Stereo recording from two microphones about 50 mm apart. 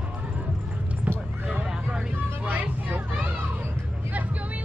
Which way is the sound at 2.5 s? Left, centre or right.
Right.